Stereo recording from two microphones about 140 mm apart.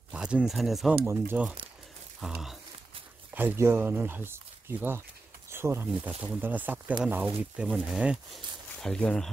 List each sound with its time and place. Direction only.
0.1 s speech: 5° right (ahead or behind)
1.0 s speech: 15° right (ahead or behind)
2.1 s speech: centre (ahead or behind)
3.3 s speech: 15° right (ahead or behind)
8.7 s speech: 5° left (ahead or behind)